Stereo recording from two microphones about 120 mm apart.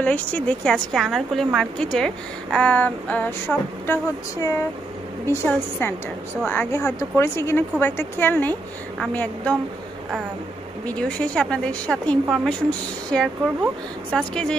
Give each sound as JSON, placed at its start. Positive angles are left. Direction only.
{"t": 0.0, "sound": "a woman's voice", "side_deg": 10}
{"t": 0.9, "sound": "a woman's voice", "side_deg": 0}
{"t": 10.9, "sound": "a woman's voice", "side_deg": 10}